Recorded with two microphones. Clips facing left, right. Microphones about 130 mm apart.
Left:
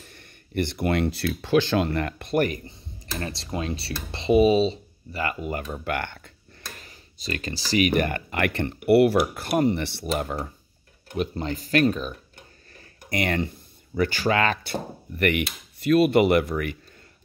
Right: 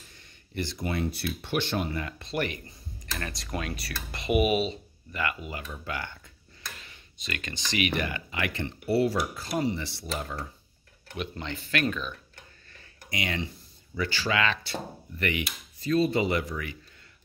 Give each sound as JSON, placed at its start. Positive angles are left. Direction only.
{"t": 0.1, "sound": "speech", "side_deg": 60}
{"t": 2.6, "sound": "speech", "side_deg": 30}
{"t": 6.8, "sound": "speech", "side_deg": 35}
{"t": 11.1, "sound": "speech", "side_deg": 40}
{"t": 13.1, "sound": "speech", "side_deg": 55}